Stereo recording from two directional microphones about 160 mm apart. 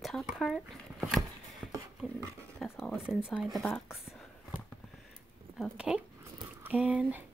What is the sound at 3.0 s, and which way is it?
Speech, 5° right (ahead or behind).